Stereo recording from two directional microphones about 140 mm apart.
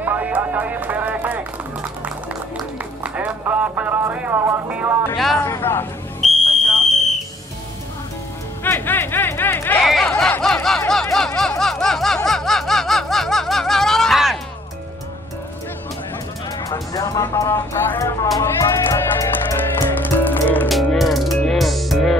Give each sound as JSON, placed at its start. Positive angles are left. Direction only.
{"t": 0.0, "sound": "music", "side_deg": -10}
{"t": 3.2, "sound": "speech", "side_deg": -10}
{"t": 5.4, "sound": "speech", "side_deg": 20}
{"t": 6.2, "sound": "fire alarm", "side_deg": 0}
{"t": 8.6, "sound": "speech", "side_deg": 15}
{"t": 9.8, "sound": "speech", "side_deg": 0}
{"t": 10.9, "sound": "snicker", "side_deg": 5}
{"t": 16.6, "sound": "speech", "side_deg": 25}
{"t": 18.6, "sound": "music", "side_deg": 20}
{"t": 20.6, "sound": "music", "side_deg": 0}